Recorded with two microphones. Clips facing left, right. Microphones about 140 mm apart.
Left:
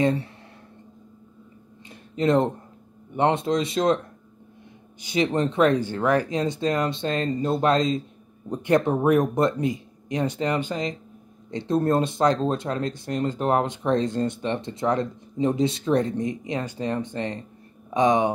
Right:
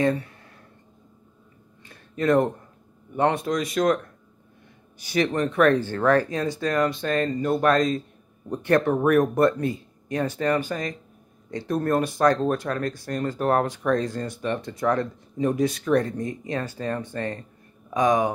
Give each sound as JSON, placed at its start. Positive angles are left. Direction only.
{"t": 0.0, "sound": "speech", "side_deg": 25}
{"t": 1.9, "sound": "a sound", "side_deg": 20}
{"t": 3.2, "sound": "speech", "side_deg": 25}
{"t": 5.0, "sound": "speech", "side_deg": 20}